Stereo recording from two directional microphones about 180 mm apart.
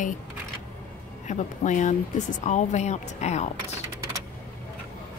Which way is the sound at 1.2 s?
40° left (ahead or behind).